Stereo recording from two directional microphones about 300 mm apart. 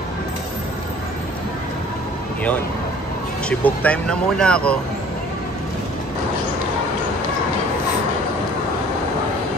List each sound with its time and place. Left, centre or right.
3.4 s speech: centre